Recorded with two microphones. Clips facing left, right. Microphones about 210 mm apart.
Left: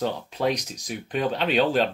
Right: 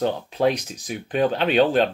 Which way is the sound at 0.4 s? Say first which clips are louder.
Right 4 dB; 5° right (ahead or behind).